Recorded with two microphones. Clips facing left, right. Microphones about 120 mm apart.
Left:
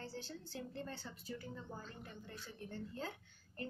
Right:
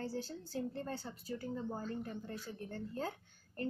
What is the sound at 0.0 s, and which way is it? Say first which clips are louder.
A woman's voice: right 7 dB; 40° right (ahead or behind).